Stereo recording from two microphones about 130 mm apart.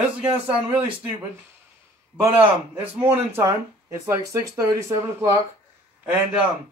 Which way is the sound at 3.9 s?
25° right (ahead or behind).